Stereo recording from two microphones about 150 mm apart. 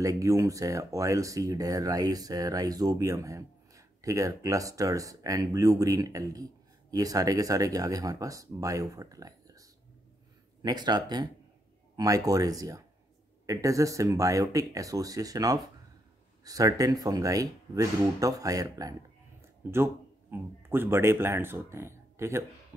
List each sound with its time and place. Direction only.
0.0 s speech: 20° right (ahead or behind)